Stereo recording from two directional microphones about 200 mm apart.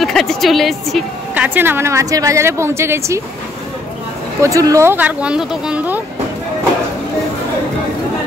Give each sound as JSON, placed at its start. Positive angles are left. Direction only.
{"t": 0.0, "sound": "a woman's voice", "side_deg": 0}
{"t": 4.4, "sound": "a woman's voice", "side_deg": -15}